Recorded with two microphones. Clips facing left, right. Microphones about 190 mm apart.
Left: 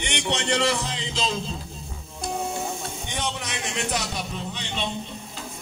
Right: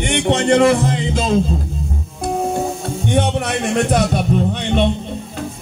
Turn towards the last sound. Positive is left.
turn(degrees=-60)  # may be behind; listen again after turning